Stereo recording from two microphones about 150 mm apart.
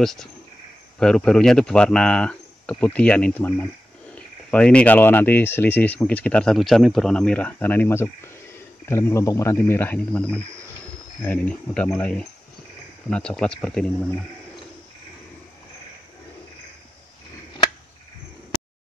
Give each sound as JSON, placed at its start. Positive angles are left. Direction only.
{"t": 0.0, "sound": "speech", "side_deg": 5}